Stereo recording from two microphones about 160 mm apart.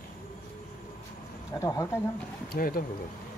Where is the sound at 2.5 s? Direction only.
65° left (ahead or behind).